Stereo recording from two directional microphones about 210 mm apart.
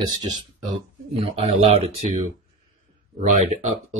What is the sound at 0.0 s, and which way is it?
Speech, 20° right (ahead or behind).